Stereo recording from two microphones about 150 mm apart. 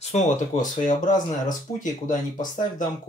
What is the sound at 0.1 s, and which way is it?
Speech, 60° left (ahead or behind).